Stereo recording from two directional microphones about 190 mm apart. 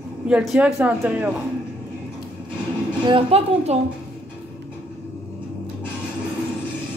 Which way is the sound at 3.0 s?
30° right (ahead or behind).